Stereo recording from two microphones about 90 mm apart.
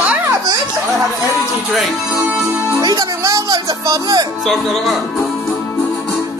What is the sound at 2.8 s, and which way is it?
Speech, 50° right (ahead or behind).